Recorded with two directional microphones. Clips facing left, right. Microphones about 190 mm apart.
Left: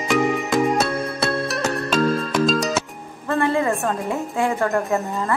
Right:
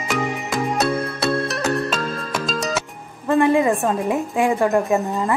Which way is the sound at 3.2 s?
15° right (ahead or behind).